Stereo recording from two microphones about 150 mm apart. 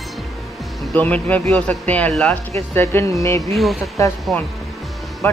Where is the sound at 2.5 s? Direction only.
20° left (ahead or behind).